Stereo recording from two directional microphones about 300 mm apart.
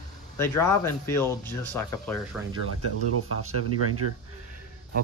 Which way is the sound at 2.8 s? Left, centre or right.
Right.